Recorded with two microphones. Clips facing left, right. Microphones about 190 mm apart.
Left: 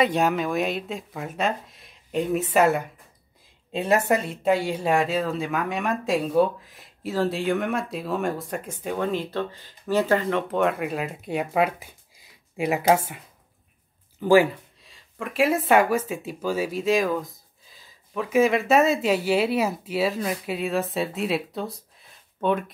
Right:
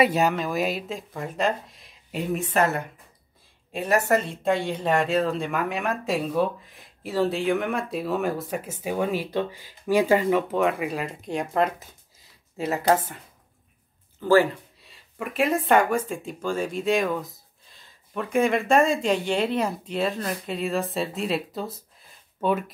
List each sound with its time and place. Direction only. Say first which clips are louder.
0.0 s speech: even; 5° right (ahead or behind)
3.7 s speech: left 1 dB; 25° left (ahead or behind)
4.3 s speech: left 2 dB; 5° left (ahead or behind)
14.2 s speech: left 1 dB; 15° left (ahead or behind)
14.8 s speech: right 1 dB; 5° right (ahead or behind)